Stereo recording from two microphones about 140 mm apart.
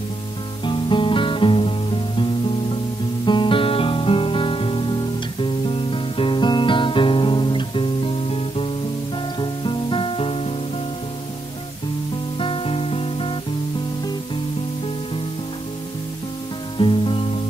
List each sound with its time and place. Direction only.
0.7 s music: 35° left (ahead or behind)
3.3 s music: 35° left (ahead or behind)
12.4 s music: 40° left (ahead or behind)
16.7 s music: 40° left (ahead or behind)